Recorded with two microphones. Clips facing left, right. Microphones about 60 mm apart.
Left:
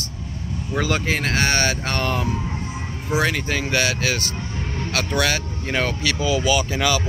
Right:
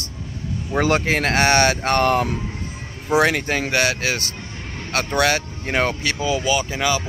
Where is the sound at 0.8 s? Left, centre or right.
Right.